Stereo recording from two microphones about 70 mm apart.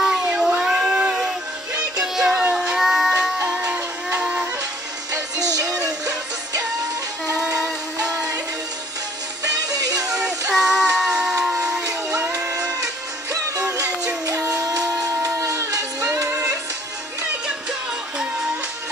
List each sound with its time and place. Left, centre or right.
0.4 s a sound: centre
2.0 s music: centre
5.1 s music: right
9.4 s music: right
10.5 s music: centre
12.3 s music: right